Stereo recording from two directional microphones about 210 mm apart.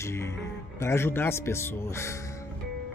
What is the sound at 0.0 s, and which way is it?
Speech, 15° left (ahead or behind).